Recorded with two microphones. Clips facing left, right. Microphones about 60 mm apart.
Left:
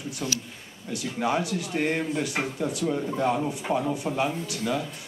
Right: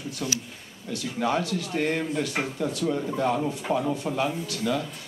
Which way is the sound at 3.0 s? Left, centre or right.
Centre.